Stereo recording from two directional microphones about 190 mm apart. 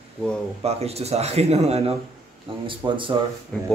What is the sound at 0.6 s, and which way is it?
A man's voice, 35° right (ahead or behind).